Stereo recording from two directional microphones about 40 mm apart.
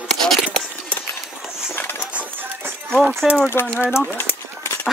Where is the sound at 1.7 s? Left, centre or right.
Left.